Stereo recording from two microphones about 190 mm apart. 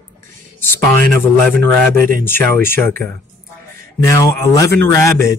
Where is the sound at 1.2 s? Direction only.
10° left (ahead or behind).